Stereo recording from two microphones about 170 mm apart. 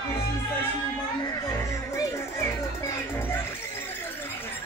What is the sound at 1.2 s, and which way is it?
Music, 20° left (ahead or behind).